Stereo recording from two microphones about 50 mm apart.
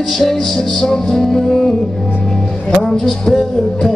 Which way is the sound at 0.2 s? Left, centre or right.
Centre.